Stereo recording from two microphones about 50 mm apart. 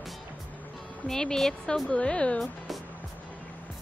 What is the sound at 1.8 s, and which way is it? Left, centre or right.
Speech, left.